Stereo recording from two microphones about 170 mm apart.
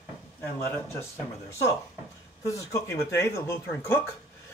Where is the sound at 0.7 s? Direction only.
15° left (ahead or behind).